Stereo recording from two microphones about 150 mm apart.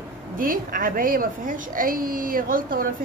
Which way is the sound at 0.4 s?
70° right (ahead or behind).